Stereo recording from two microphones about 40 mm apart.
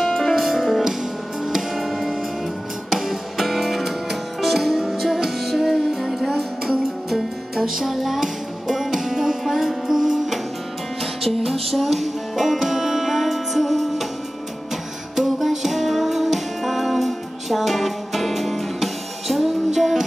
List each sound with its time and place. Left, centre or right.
0.0 s music: centre
0.4 s music: centre
15.1 s music: centre